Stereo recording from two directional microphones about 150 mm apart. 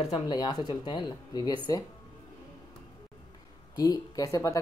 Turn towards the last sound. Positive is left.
turn(degrees=20)  # may be behind; listen again after turning